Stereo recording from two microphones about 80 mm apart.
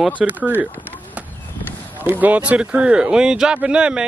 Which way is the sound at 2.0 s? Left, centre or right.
Right.